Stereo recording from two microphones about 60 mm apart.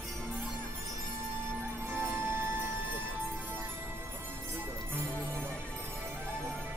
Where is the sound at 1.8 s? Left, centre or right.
Right.